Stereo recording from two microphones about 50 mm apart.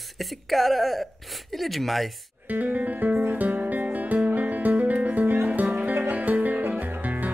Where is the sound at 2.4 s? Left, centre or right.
Right.